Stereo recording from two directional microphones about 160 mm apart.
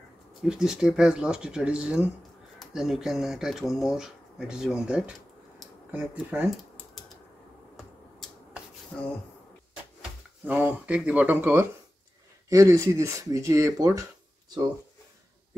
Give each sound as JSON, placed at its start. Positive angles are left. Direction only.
{"t": 0.4, "sound": "speech", "side_deg": -5}
{"t": 7.0, "sound": "typing", "side_deg": 0}
{"t": 7.7, "sound": "finger snapping", "side_deg": 0}
{"t": 10.4, "sound": "speech", "side_deg": -10}
{"t": 12.4, "sound": "speech", "side_deg": -20}